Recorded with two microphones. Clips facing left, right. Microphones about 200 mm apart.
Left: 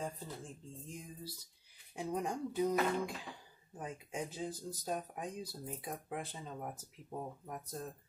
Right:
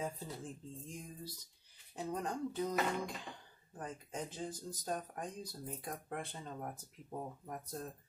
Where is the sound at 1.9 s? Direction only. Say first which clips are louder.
Left 2 dB; 10° left (ahead or behind).